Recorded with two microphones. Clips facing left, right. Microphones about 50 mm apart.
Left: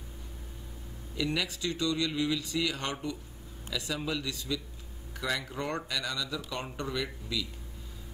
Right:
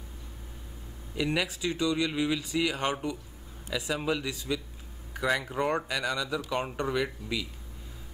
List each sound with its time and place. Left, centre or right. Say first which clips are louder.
1.1 s speech: right 3 dB; centre